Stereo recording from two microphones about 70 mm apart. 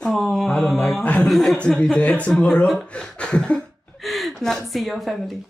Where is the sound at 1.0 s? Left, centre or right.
Left.